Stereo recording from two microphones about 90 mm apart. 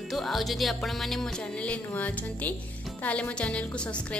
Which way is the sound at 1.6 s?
15° left (ahead or behind).